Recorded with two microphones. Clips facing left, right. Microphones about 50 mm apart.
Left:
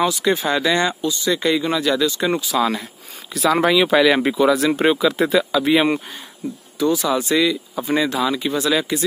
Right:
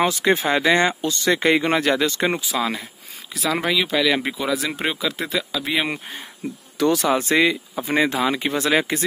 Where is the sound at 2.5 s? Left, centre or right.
Centre.